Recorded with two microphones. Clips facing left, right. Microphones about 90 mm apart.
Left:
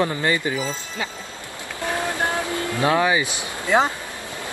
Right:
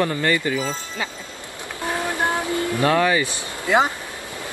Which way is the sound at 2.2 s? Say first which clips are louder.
Right 4 dB; 20° right (ahead or behind).